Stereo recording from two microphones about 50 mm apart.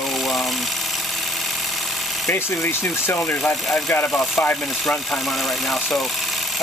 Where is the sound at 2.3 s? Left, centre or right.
Left.